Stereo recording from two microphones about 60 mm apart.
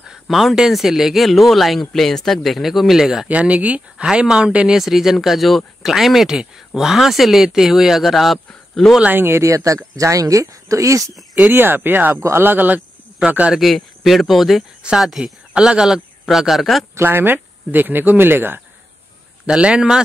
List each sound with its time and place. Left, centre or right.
0.3 s speech: centre
3.3 s speech: right
4.6 s speech: centre
9.0 s speech: right
9.3 s speech: right
11.4 s speech: right
12.2 s speech: right
12.4 s speech: right
13.6 s speech: centre
16.9 s speech: right
19.4 s speech: centre